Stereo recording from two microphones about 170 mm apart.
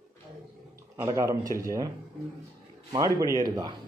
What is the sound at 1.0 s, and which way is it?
Speech, 15° right (ahead or behind).